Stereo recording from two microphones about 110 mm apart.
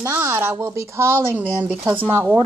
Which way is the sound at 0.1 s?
20° right (ahead or behind).